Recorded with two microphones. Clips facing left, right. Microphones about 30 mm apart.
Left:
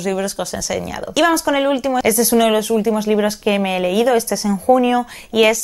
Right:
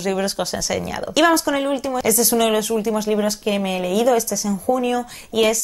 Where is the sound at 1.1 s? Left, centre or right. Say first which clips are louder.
Left 1 dB; centre.